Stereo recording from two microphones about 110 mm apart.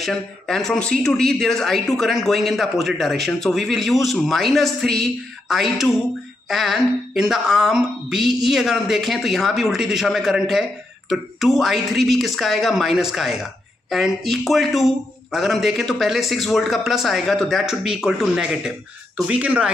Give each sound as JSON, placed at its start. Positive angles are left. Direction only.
{"t": 0.0, "sound": "speech", "side_deg": 5}